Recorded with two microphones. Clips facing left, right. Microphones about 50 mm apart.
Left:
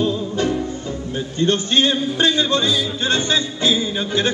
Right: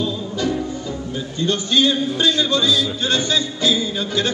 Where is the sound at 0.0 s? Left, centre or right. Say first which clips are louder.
Left 3 dB; left.